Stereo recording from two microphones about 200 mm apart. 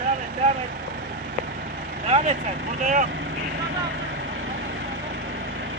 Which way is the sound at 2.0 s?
30° right (ahead or behind).